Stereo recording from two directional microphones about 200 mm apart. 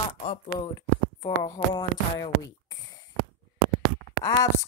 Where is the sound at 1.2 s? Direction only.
20° left (ahead or behind).